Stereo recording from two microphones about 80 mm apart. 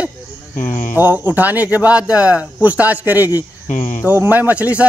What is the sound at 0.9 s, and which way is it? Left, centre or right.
A man's voice, right.